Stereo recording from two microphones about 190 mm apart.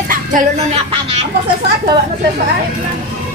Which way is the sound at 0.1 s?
45° right (ahead or behind).